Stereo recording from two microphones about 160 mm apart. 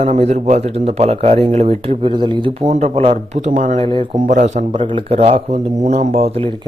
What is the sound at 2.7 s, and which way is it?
Speech, 40° right (ahead or behind).